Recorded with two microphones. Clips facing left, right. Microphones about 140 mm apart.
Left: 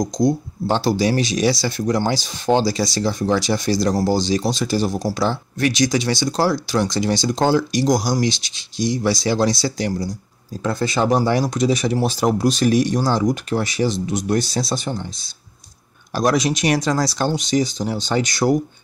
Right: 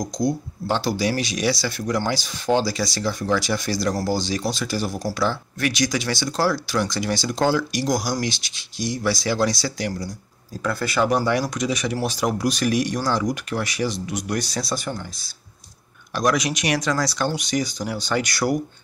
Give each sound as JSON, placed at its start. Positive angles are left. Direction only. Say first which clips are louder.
{"t": 0.0, "sound": "speech", "louder": "left 5 dB", "side_deg": 25}
{"t": 16.2, "sound": "speech", "louder": "left 3 dB", "side_deg": 30}